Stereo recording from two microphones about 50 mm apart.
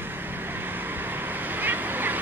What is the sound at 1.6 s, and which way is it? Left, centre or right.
Vehicle, right.